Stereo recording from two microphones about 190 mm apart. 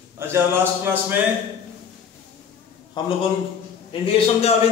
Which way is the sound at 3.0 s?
20° left (ahead or behind).